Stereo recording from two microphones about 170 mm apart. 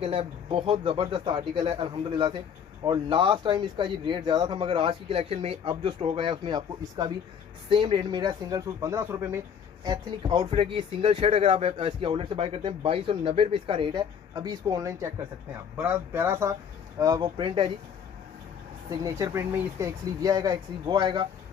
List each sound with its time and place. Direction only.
0.0 s speech: 30° right (ahead or behind); by 16.5 s 15° right (ahead or behind)
17.0 s speech: 25° right (ahead or behind)
18.9 s speech: 20° right (ahead or behind)